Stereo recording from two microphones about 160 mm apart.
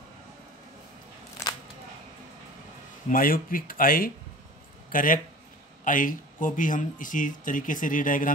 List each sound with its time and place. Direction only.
3.1 s speech: 60° left (ahead or behind)